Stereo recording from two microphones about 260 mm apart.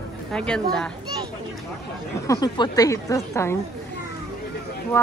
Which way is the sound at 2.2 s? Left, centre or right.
Centre.